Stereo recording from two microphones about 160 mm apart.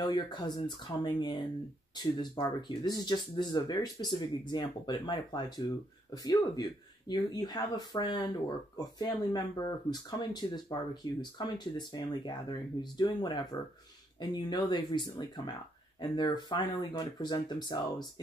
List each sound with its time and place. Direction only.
0.0 s speech: 25° left (ahead or behind)